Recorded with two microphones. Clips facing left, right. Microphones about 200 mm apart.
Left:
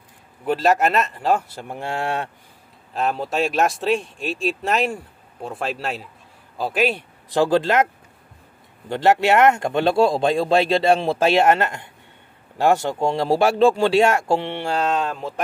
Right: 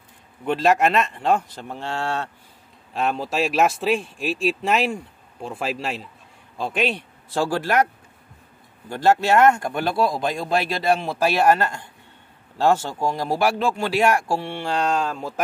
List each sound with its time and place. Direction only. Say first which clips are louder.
0.5 s speech: even; centre (ahead or behind)
2.9 s speech: left 1 dB; centre (ahead or behind)
7.2 s speech: left 5 dB; 20° left (ahead or behind)
14.7 s speech: even; 5° left (ahead or behind)